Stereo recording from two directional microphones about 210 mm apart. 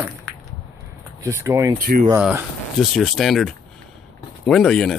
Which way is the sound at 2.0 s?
10° right (ahead or behind).